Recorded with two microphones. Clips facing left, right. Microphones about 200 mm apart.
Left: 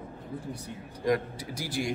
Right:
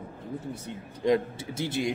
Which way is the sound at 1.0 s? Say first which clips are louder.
Right 3 dB; 25° right (ahead or behind).